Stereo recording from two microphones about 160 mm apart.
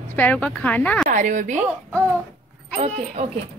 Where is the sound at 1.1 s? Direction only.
50° right (ahead or behind).